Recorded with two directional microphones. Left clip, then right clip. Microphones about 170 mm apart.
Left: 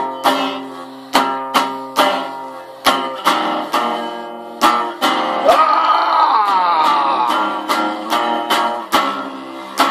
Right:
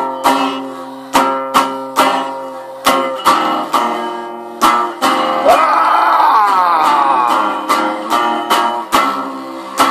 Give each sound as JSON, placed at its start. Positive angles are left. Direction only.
{"t": 0.2, "sound": "music", "side_deg": 40}
{"t": 5.7, "sound": "music", "side_deg": 10}
{"t": 6.0, "sound": "a sound", "side_deg": 10}
{"t": 7.4, "sound": "music", "side_deg": 40}